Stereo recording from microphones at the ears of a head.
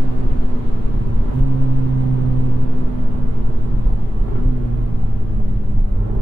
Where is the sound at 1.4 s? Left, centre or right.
Right.